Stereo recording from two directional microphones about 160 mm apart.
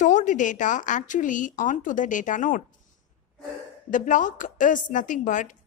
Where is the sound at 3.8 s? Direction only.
55° left (ahead or behind).